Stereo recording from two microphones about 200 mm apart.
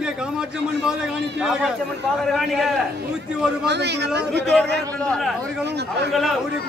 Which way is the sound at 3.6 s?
60° right (ahead or behind).